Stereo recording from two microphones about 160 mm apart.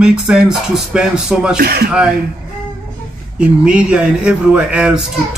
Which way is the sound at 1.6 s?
75° right (ahead or behind).